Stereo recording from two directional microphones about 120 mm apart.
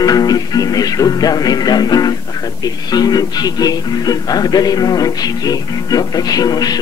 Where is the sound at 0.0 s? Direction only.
35° left (ahead or behind).